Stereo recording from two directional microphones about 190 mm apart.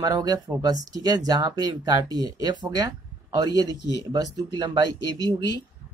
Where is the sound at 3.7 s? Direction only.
65° left (ahead or behind).